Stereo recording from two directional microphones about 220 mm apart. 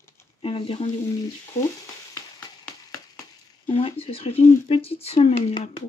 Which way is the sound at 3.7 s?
25° left (ahead or behind).